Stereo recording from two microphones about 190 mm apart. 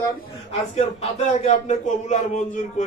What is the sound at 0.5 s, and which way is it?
Speech, 35° left (ahead or behind).